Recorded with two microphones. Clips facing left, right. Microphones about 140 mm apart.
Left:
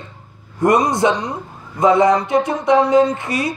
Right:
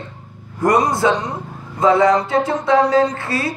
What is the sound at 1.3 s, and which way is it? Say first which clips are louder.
Speech: even; 20° left (ahead or behind).